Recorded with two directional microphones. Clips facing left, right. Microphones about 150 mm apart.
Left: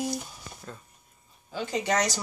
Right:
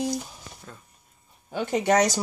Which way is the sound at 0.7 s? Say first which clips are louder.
Left 4 dB; centre (ahead or behind).